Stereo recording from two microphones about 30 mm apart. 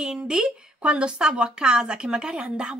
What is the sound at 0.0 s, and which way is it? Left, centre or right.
Speech, right.